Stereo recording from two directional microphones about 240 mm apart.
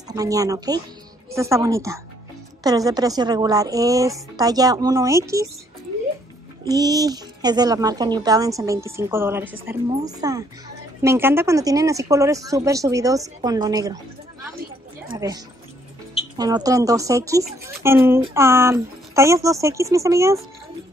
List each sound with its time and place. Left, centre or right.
0.1 s a woman's voice: centre
6.6 s a woman's voice: centre
15.1 s a woman's voice: centre